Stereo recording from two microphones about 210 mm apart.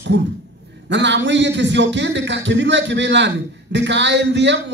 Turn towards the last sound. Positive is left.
turn(degrees=-60)  # may be behind; listen again after turning